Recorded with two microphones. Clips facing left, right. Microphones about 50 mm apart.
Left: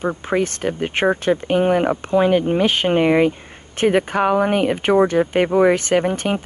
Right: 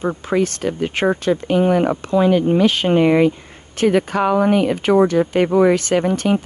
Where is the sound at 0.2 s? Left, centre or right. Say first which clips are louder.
Right 1 dB; left.